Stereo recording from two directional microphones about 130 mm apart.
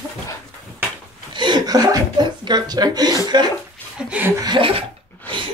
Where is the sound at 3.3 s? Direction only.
35° right (ahead or behind).